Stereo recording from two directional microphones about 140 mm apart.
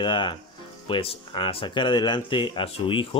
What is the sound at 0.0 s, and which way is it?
Speech, 35° left (ahead or behind).